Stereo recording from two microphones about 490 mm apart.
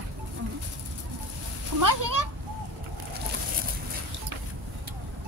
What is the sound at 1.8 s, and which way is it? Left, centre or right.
Speech, right.